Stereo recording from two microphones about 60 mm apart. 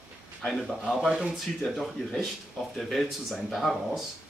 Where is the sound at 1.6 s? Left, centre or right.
Centre.